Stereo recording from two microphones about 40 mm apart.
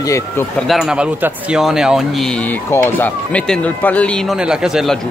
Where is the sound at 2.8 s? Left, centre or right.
Left.